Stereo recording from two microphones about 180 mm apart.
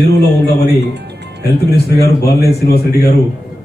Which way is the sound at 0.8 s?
70° right (ahead or behind).